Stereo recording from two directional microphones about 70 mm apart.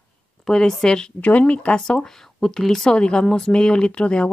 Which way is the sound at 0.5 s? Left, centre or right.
Centre.